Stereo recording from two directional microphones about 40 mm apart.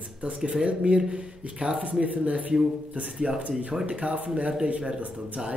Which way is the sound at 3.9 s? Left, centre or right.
Right.